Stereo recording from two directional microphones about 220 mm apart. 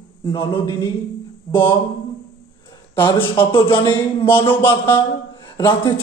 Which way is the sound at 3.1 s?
25° left (ahead or behind).